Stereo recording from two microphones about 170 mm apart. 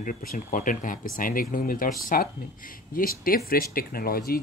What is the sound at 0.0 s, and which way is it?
Speech, 50° left (ahead or behind).